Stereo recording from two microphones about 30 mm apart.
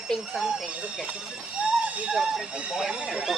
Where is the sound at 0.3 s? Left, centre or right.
Centre.